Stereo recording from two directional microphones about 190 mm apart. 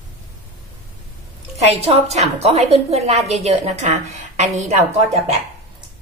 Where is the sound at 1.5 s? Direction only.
35° right (ahead or behind).